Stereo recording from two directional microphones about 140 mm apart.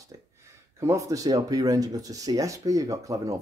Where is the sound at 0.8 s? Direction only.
25° right (ahead or behind).